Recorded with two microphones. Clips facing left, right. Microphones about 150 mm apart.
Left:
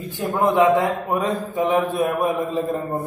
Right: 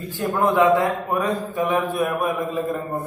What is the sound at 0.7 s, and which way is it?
A man's voice, 20° left (ahead or behind).